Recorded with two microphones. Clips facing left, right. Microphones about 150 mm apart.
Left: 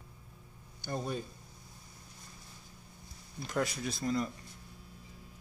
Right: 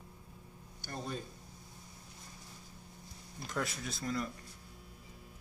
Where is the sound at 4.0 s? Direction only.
20° left (ahead or behind).